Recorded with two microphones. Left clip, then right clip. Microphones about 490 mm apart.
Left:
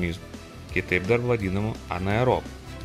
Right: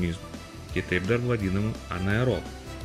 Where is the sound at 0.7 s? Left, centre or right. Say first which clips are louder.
Left 3 dB; centre.